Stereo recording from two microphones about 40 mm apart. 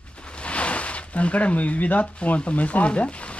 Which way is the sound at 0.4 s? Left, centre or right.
Left.